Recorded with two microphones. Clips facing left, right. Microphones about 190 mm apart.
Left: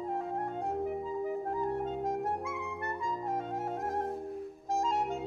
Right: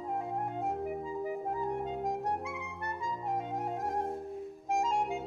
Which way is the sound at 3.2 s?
15° right (ahead or behind).